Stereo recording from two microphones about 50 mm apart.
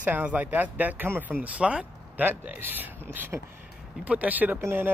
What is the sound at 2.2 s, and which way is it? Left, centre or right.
Speech, right.